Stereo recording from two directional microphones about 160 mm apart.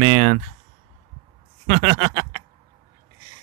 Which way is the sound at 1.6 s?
40° right (ahead or behind).